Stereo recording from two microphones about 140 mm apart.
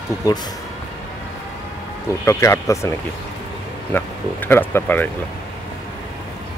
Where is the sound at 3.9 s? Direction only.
15° left (ahead or behind).